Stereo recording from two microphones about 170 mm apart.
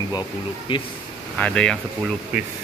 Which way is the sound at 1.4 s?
5° left (ahead or behind).